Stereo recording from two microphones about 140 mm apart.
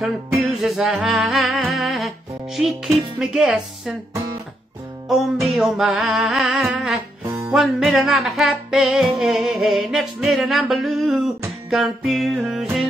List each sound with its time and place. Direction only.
0.0 s music: centre (ahead or behind)
5.0 s music: centre (ahead or behind)
7.2 s music: 20° right (ahead or behind)
7.5 s music: centre (ahead or behind)